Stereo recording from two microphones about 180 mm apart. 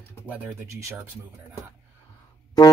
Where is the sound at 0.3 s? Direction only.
10° right (ahead or behind).